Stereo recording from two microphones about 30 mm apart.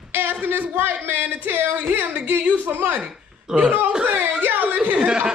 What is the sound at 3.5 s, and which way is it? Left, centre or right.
Speech, right.